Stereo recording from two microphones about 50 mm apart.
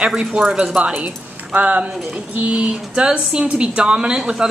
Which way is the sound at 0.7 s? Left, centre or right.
Right.